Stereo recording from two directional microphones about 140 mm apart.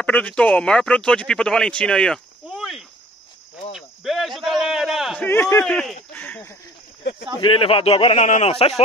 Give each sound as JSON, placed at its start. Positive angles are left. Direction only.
{"t": 0.0, "sound": "speech", "side_deg": 10}
{"t": 2.4, "sound": "a sound", "side_deg": 0}
{"t": 5.2, "sound": "speech", "side_deg": 15}
{"t": 5.7, "sound": "speech", "side_deg": 5}
{"t": 7.3, "sound": "a man's voice", "side_deg": 35}